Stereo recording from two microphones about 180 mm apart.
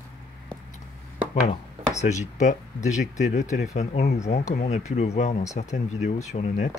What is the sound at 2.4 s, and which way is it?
Speech, 40° left (ahead or behind).